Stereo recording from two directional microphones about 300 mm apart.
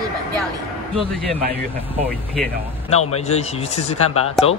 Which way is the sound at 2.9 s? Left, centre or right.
Left.